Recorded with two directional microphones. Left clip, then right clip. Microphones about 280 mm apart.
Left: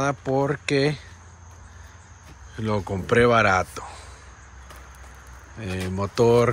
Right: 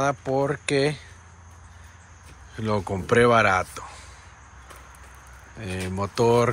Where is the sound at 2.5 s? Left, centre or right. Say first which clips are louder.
Even; centre.